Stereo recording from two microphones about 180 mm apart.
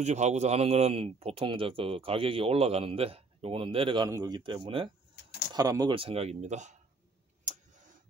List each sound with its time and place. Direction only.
0.0 s a man's voice: 40° right (ahead or behind)
7.5 s tick-tock: 45° right (ahead or behind)